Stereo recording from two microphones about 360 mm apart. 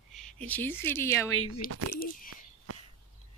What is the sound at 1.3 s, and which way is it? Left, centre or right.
Speech, left.